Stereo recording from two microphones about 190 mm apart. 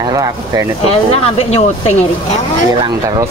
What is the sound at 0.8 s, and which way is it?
Speech, 30° left (ahead or behind).